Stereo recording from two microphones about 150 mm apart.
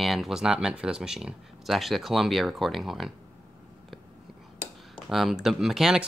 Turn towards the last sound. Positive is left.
turn(degrees=0)  # may be behind; listen again after turning